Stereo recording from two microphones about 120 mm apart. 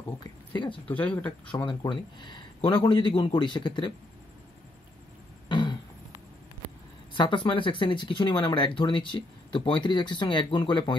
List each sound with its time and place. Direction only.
0.8 s speech: 10° left (ahead or behind)
1.5 s speech: 40° left (ahead or behind)
5.5 s a sound: 40° left (ahead or behind)
7.2 s speech: 45° left (ahead or behind)